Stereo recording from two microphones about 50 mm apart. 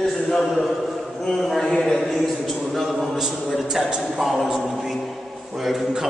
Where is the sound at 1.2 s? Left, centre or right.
Centre.